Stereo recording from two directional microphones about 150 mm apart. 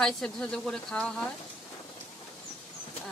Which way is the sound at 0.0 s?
5° left (ahead or behind).